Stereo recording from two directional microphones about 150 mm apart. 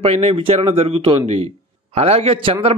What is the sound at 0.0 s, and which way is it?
A man's voice, 40° right (ahead or behind).